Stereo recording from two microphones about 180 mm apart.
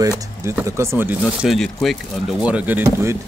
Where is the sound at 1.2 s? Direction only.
Centre (ahead or behind).